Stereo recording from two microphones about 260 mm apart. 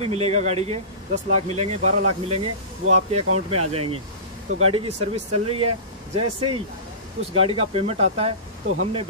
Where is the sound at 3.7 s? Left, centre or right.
Right.